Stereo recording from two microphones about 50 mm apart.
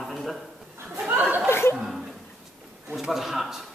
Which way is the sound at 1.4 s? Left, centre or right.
Left.